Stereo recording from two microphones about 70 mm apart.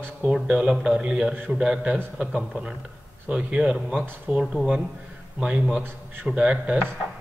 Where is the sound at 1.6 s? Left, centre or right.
Centre.